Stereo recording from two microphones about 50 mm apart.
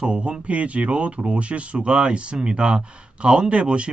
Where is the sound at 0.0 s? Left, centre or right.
Right.